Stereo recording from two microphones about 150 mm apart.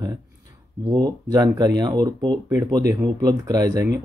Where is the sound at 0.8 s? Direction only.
25° right (ahead or behind).